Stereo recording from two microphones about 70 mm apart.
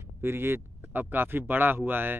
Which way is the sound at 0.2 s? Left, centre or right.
Right.